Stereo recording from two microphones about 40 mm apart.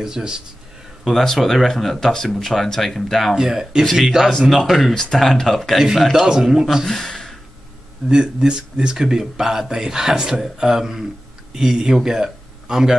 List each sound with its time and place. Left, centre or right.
0.0 s speech: centre
1.0 s speech: centre
3.3 s speech: centre
4.5 s speech: centre
6.1 s speech: centre
6.9 s a sound: centre
8.1 s speech: right